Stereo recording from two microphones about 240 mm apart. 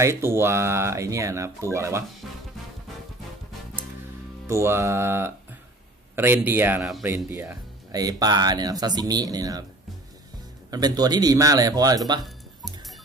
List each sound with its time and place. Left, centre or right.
0.0 s speech: centre
4.5 s speech: centre
10.7 s speech: centre